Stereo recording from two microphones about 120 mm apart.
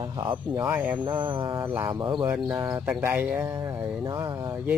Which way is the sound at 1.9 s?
40° right (ahead or behind).